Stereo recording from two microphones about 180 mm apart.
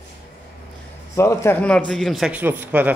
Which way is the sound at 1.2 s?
15° left (ahead or behind).